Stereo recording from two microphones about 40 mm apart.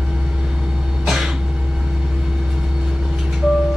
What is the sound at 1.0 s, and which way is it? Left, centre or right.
Cough, centre.